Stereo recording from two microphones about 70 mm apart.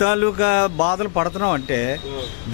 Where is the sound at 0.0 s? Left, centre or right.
Centre.